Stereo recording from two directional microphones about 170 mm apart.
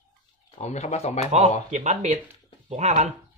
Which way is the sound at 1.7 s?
45° right (ahead or behind).